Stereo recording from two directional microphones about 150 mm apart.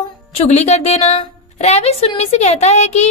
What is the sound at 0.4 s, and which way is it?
A woman's voice, 50° left (ahead or behind).